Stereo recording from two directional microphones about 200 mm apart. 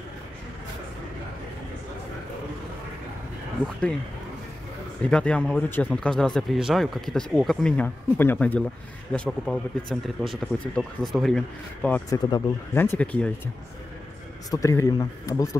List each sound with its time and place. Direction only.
5.0 s speech: 5° left (ahead or behind)
12.1 s speech: 20° left (ahead or behind)
14.5 s speech: 15° left (ahead or behind)